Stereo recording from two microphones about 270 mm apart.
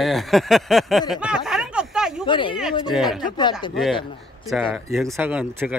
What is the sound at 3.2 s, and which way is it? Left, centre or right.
Speech, centre.